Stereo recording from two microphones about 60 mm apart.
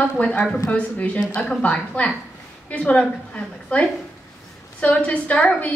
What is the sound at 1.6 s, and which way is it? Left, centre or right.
A woman's voice, left.